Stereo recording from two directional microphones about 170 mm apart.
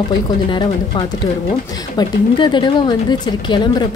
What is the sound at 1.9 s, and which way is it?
Speech, 25° left (ahead or behind).